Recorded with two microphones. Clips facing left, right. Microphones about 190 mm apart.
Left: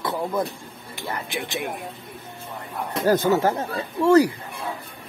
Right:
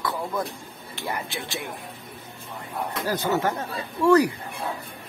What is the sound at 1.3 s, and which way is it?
Speech, 15° left (ahead or behind).